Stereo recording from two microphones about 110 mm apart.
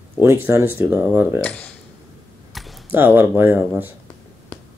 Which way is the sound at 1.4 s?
15° left (ahead or behind).